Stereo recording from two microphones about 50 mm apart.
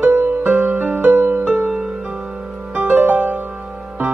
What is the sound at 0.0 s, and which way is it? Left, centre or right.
Music, right.